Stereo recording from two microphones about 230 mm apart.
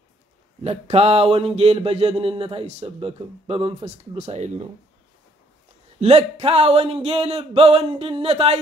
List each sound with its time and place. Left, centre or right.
0.7 s mantra: right
5.9 s mantra: right